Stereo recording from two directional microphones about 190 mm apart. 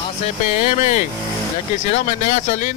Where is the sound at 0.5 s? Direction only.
40° left (ahead or behind).